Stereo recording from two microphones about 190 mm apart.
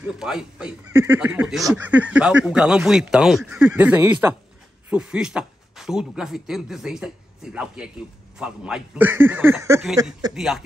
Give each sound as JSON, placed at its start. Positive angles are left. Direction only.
{"t": 0.0, "sound": "speech", "side_deg": -5}
{"t": 10.3, "sound": "speech", "side_deg": 0}